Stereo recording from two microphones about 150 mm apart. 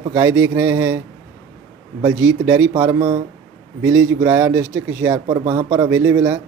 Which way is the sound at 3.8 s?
15° right (ahead or behind).